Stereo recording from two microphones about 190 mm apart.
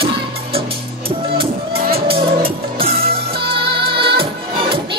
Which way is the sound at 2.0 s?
30° right (ahead or behind).